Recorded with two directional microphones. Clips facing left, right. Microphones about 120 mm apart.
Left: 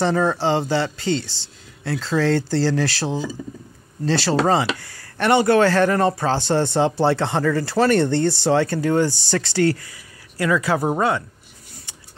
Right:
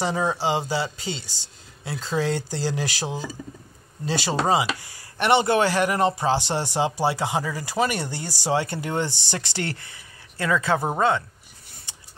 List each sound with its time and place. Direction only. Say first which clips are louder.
0.0 s a woman's voice: left 5 dB; 10° right (ahead or behind); by 10.8 s 25° right (ahead or behind)